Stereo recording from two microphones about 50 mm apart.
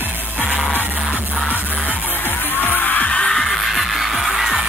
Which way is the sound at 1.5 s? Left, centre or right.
Left.